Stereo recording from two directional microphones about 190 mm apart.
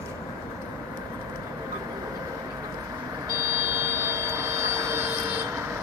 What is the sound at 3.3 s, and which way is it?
Vehicle, 15° right (ahead or behind).